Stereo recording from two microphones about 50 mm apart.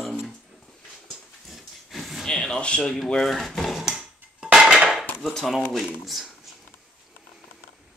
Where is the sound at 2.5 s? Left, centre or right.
Centre.